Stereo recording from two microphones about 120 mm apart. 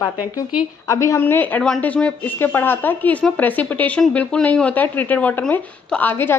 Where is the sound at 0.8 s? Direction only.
25° left (ahead or behind).